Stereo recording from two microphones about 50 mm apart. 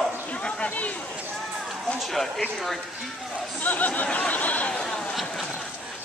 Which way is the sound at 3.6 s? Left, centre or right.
Left.